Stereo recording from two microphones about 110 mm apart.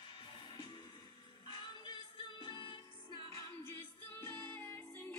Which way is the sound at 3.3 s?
25° left (ahead or behind).